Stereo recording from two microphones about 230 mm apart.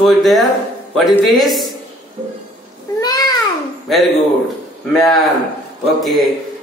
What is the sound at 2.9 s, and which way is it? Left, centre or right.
Babbling, centre.